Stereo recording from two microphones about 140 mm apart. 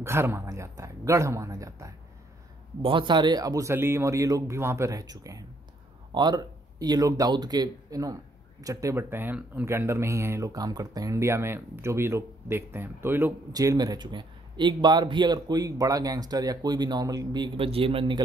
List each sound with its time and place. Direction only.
0.0 s speech: 20° right (ahead or behind)
2.8 s speech: 35° right (ahead or behind); by 13.3 s 15° right (ahead or behind)
13.5 s speech: 25° right (ahead or behind)